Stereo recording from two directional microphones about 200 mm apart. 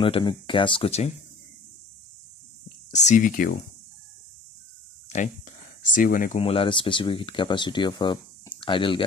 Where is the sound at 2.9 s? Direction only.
35° left (ahead or behind).